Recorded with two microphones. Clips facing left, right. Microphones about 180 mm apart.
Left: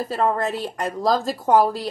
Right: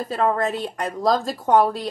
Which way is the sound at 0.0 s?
Centre (ahead or behind).